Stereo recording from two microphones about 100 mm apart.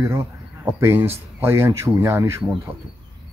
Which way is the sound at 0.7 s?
25° right (ahead or behind).